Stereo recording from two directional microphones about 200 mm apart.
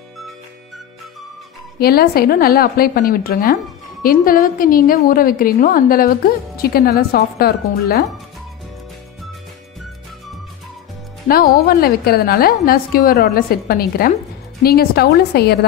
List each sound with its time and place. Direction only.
1.8 s a woman's voice: 50° left (ahead or behind)
11.2 s a woman's voice: 50° left (ahead or behind)